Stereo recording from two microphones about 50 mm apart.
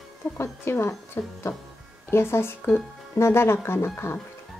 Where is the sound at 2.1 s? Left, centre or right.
Left.